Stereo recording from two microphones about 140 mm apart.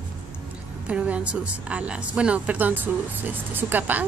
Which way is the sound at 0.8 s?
10° right (ahead or behind).